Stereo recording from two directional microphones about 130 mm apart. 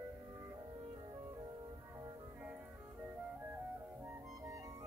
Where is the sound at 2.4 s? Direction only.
10° right (ahead or behind).